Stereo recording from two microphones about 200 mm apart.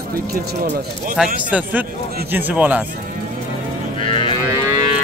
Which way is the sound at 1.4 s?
5° right (ahead or behind).